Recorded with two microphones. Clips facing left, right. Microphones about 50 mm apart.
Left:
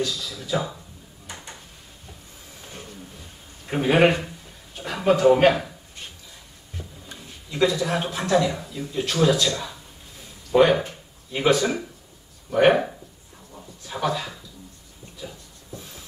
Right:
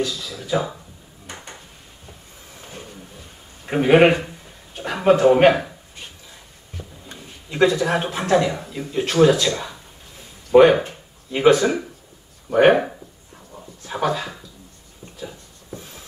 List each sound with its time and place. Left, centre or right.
0.0 s speech: right
2.6 s a sound: centre
3.6 s speech: right
5.0 s speech: right
7.1 s speech: right
13.8 s speech: right
15.7 s a sound: right